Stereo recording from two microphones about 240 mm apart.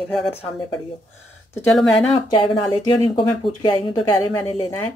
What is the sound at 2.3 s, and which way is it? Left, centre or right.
Speech, centre.